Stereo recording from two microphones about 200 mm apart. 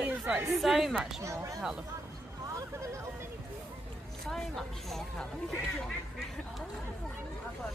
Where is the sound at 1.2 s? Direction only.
15° right (ahead or behind).